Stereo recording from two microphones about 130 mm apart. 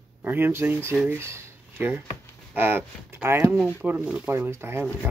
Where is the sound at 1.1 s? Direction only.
20° right (ahead or behind).